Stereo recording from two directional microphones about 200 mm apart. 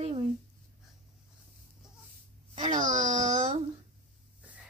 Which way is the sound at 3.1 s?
40° right (ahead or behind).